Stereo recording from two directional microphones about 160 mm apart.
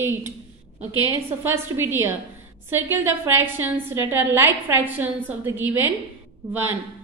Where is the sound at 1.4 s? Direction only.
15° right (ahead or behind).